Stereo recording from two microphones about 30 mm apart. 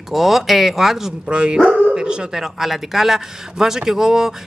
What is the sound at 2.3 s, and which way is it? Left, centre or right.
A woman's voice, centre.